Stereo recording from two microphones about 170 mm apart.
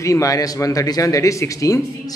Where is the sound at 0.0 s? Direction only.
20° left (ahead or behind).